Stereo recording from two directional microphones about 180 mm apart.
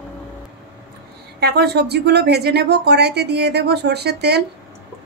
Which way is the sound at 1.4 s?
65° right (ahead or behind).